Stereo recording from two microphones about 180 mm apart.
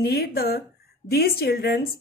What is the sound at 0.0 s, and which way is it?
Speech, 60° left (ahead or behind).